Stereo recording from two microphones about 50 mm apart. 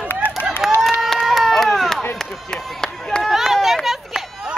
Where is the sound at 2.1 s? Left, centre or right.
Centre.